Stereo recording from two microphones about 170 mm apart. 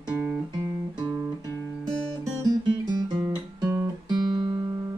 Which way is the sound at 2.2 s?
25° right (ahead or behind).